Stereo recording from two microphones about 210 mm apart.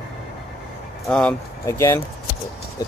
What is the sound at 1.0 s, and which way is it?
Speech, 5° left (ahead or behind).